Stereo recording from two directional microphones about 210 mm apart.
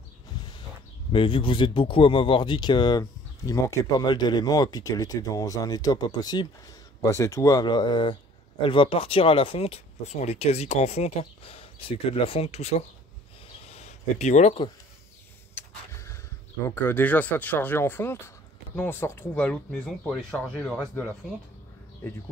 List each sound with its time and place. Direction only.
1.1 s speech: 25° left (ahead or behind)
15.5 s vehicle: 15° left (ahead or behind)
16.6 s speech: 10° left (ahead or behind)